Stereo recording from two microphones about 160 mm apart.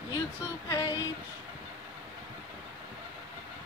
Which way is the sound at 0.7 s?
20° left (ahead or behind).